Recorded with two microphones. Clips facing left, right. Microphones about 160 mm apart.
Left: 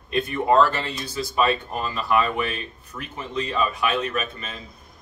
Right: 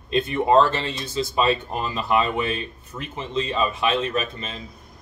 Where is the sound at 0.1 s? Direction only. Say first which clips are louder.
Right 2 dB; 25° right (ahead or behind).